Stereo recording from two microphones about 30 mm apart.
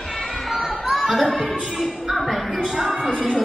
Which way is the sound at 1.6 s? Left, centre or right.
Centre.